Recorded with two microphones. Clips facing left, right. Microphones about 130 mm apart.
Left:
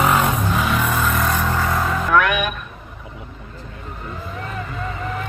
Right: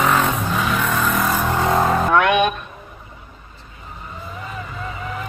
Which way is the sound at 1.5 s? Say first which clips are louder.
Right 4 dB; 25° right (ahead or behind).